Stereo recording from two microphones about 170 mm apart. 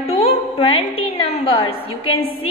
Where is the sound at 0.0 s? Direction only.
35° left (ahead or behind).